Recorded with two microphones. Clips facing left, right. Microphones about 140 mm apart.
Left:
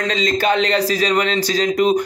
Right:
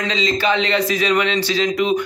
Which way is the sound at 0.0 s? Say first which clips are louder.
Left 1 dB; 50° left (ahead or behind).